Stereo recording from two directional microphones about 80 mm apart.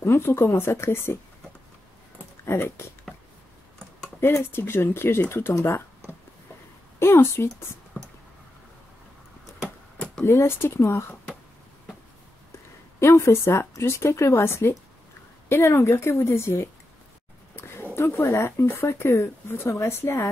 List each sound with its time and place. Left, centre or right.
0.0 s speech: left
2.4 s speech: left
4.2 s speech: left
7.0 s speech: left
10.2 s speech: left
13.0 s speech: left
17.6 s a sound: left
17.9 s speech: left